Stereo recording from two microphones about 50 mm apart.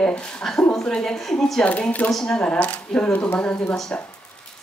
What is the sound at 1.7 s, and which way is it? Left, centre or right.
Speech, left.